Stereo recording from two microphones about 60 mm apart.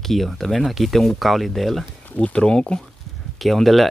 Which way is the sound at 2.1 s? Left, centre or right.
Centre.